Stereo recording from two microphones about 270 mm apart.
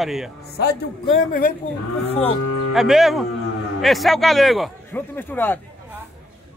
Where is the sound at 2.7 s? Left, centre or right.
Centre.